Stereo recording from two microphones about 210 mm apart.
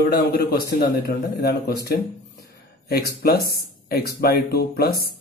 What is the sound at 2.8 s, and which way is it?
Speech, 50° left (ahead or behind).